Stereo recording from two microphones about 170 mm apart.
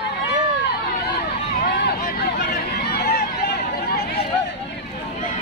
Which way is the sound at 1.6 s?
70° left (ahead or behind).